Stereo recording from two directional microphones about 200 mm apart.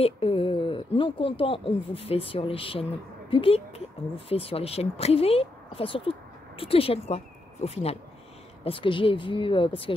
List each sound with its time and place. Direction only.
0.0 s speech: 30° left (ahead or behind)